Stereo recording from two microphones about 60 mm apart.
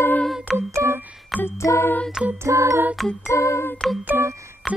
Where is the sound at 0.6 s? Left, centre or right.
Right.